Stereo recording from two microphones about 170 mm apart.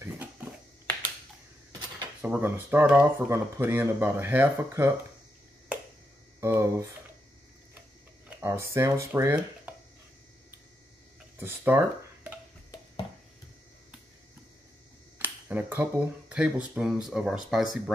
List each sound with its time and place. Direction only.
0.0 s a sound: 10° right (ahead or behind)
1.7 s dishes: 20° right (ahead or behind)
2.2 s speech: 10° right (ahead or behind)
6.4 s speech: 15° right (ahead or behind)
8.3 s speech: 15° right (ahead or behind)
11.3 s a sound: 10° right (ahead or behind)
15.1 s speech: 10° right (ahead or behind)